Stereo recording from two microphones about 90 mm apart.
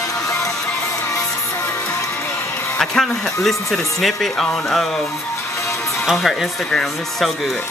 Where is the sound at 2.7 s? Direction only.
5° left (ahead or behind).